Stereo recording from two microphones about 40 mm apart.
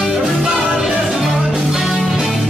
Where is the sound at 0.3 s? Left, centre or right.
Centre.